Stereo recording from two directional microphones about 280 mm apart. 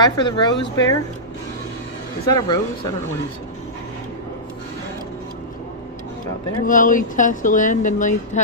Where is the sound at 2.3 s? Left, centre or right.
Centre.